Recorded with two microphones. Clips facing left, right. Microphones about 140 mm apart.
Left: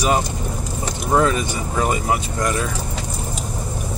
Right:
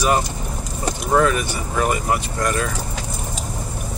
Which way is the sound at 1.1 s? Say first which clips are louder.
Even; 25° left (ahead or behind).